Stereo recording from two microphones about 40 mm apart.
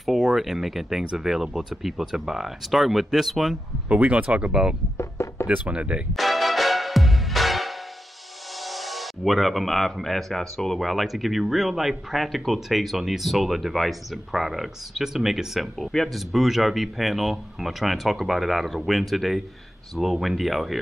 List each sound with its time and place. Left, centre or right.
0.0 s speech: centre
4.1 s speech: right
4.5 s speech: centre
4.9 s a sound: left
5.7 s speech: right
6.1 s music: centre
10.0 s speech: centre
15.8 s speech: centre
16.1 s speech: centre